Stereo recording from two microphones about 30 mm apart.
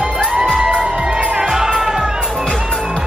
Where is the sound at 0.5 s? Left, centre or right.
Right.